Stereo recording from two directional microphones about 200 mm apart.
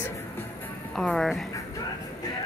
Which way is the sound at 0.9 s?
Centre (ahead or behind).